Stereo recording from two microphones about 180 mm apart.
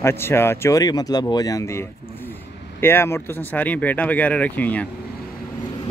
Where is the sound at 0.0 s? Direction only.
15° left (ahead or behind).